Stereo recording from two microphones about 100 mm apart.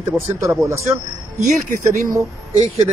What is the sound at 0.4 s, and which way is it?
Speech, 30° right (ahead or behind).